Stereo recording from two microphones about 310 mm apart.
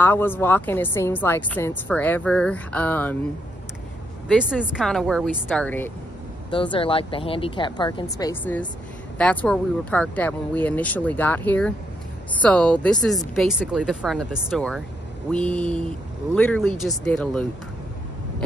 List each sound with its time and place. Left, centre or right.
0.0 s speech: centre
4.3 s speech: centre
6.5 s speech: centre